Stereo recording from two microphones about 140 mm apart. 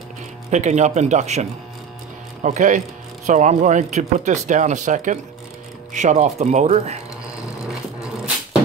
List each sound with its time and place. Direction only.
0.5 s speech: 55° right (ahead or behind)